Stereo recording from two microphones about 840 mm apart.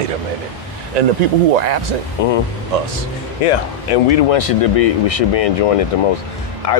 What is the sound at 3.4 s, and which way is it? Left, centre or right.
Speech, left.